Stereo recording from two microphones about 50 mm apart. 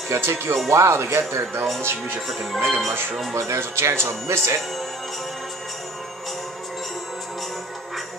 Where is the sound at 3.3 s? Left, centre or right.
Right.